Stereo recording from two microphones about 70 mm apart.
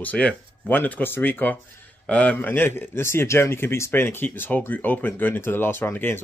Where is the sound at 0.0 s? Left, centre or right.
Left.